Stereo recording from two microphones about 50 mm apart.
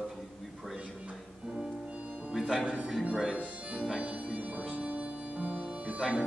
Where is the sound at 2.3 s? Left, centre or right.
Centre.